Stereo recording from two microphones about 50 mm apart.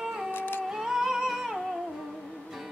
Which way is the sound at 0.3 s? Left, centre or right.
Left.